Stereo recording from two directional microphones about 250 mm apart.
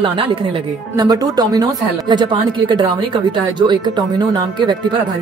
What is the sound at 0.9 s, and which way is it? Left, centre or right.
Speech, centre.